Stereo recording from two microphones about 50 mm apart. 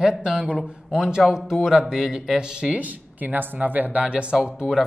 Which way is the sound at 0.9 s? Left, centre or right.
Centre.